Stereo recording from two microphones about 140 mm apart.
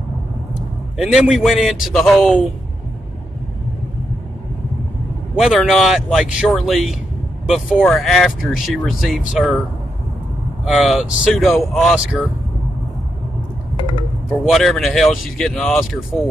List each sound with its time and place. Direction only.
0.9 s speech: 5° right (ahead or behind)
5.4 s speech: centre (ahead or behind)
10.6 s speech: centre (ahead or behind)
13.7 s a sound: 35° left (ahead or behind)
14.4 s speech: centre (ahead or behind)